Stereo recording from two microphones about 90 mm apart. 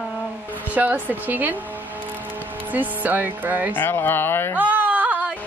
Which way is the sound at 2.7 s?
20° right (ahead or behind).